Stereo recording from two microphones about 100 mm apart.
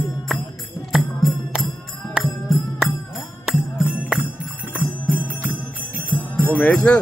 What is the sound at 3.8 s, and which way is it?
Music, 15° right (ahead or behind).